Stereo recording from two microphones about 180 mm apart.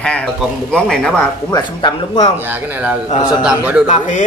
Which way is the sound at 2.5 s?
10° right (ahead or behind).